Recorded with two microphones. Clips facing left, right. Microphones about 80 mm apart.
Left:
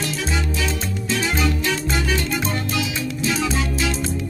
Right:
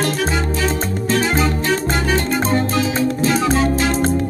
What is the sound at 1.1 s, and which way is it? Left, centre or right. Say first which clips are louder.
Music: right 4 dB; right.